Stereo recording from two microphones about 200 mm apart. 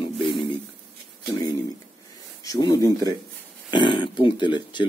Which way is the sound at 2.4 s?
20° left (ahead or behind).